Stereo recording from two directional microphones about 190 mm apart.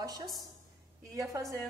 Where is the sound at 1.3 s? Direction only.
15° right (ahead or behind).